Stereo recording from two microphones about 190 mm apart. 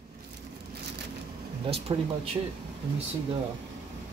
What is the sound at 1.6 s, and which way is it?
Speech, 25° right (ahead or behind).